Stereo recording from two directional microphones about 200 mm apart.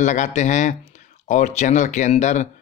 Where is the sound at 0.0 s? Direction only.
40° left (ahead or behind).